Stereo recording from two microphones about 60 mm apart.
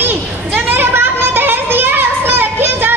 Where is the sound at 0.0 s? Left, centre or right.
Right.